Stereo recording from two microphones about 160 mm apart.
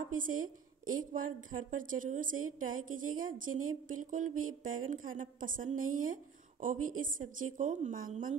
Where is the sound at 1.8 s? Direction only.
55° right (ahead or behind).